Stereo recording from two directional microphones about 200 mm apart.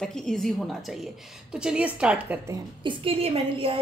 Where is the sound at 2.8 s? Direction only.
25° right (ahead or behind).